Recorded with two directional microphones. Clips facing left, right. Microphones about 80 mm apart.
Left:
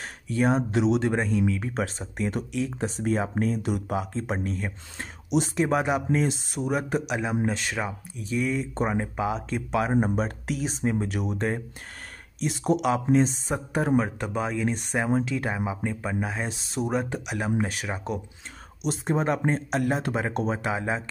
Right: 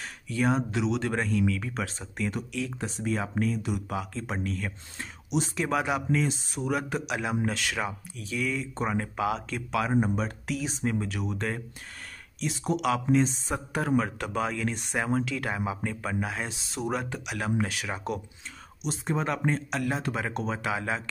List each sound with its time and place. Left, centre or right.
0.0 s speech: left
1.1 s speech: left
4.9 s speech: left
5.6 s speech: left
6.2 s speech: left
6.7 s speech: left
12.6 s speech: left
16.4 s speech: left